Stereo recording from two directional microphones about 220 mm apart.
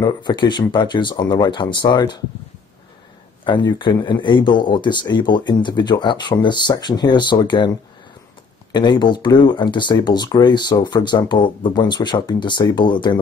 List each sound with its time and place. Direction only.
0.0 s speech: 20° left (ahead or behind)
3.7 s speech: 20° left (ahead or behind)
8.7 s speech: 20° left (ahead or behind)